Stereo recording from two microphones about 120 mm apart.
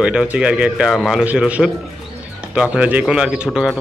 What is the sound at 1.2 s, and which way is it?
Speech, 10° right (ahead or behind).